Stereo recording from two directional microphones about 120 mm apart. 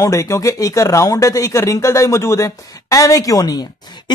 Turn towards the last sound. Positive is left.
turn(degrees=30)  # may be behind; listen again after turning